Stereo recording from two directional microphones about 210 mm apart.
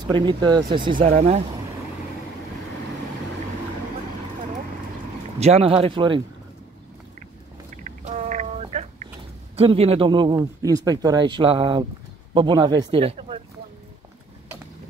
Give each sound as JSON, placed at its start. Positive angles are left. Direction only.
{"t": 0.1, "sound": "speech", "side_deg": -20}
{"t": 0.9, "sound": "speech", "side_deg": -35}
{"t": 5.4, "sound": "speech", "side_deg": -30}
{"t": 8.0, "sound": "turkey", "side_deg": -35}
{"t": 9.6, "sound": "speech", "side_deg": -30}